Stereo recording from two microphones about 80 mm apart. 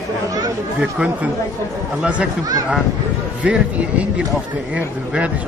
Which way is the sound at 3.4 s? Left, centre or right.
Centre.